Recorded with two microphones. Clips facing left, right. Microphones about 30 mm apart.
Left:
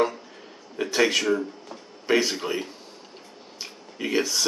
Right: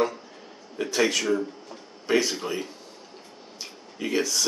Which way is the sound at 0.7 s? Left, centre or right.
Centre.